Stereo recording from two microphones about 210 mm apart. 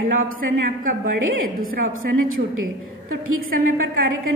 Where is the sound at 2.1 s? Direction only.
75° right (ahead or behind).